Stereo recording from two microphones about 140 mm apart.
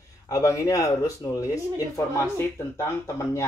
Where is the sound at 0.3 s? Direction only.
25° left (ahead or behind).